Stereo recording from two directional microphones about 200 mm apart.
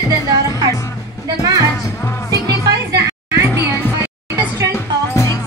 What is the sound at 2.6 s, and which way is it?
Music, 15° right (ahead or behind).